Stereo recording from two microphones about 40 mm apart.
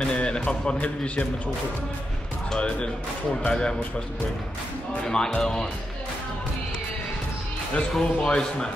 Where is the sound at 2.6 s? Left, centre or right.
Left.